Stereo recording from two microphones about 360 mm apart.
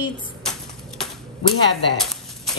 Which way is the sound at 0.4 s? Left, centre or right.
Centre.